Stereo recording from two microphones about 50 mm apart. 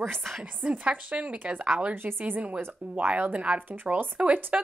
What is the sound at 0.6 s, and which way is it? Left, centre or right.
A woman's voice, right.